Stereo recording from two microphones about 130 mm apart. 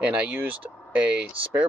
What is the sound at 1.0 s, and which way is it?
Speech, 10° right (ahead or behind).